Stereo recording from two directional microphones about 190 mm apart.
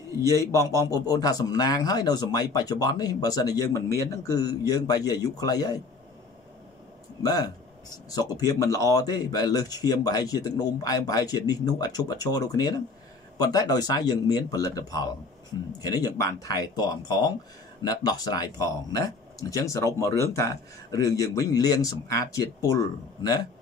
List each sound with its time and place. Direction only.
0.3 s speech: 15° left (ahead or behind)
7.2 s speech: 20° left (ahead or behind)